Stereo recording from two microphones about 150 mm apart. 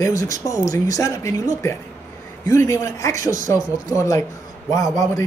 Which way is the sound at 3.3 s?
60° right (ahead or behind).